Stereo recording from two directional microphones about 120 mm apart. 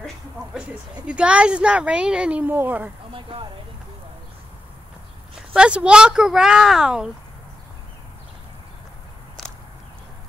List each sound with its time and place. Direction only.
0.6 s a woman's voice: 10° right (ahead or behind)
3.1 s speech: 45° right (ahead or behind)
5.5 s speech: 10° right (ahead or behind)